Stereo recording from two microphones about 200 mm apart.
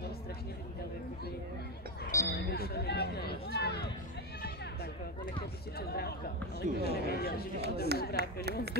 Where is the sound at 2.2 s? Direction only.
50° left (ahead or behind).